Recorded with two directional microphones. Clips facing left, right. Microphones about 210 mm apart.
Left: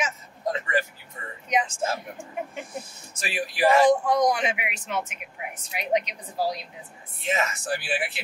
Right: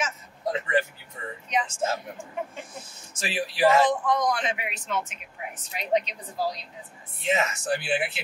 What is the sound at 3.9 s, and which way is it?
Speech, 10° left (ahead or behind).